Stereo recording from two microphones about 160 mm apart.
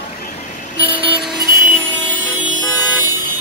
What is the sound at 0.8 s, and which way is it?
Vehicle, 10° right (ahead or behind).